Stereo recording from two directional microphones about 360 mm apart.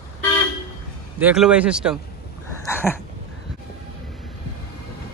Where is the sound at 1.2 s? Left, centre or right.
Centre.